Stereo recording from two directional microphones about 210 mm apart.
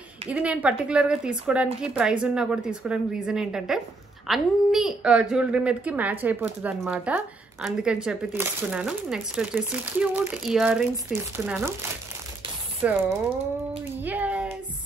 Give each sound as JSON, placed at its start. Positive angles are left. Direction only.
{"t": 0.3, "sound": "a woman's voice", "side_deg": -5}
{"t": 12.8, "sound": "speech", "side_deg": -10}
{"t": 14.0, "sound": "a sound", "side_deg": -5}